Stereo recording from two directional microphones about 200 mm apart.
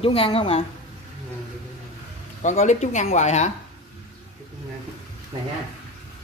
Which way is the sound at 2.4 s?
35° left (ahead or behind).